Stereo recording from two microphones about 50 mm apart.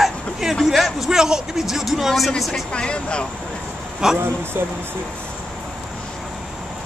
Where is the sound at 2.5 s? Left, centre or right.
Centre.